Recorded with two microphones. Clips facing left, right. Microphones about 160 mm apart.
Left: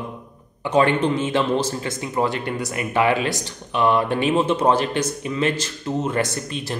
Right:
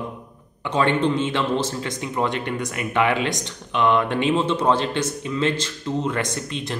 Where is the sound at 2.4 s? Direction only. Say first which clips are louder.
Left 1 dB; 35° left (ahead or behind).